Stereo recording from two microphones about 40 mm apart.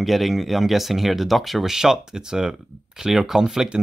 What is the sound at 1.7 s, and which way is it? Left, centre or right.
Speech, centre.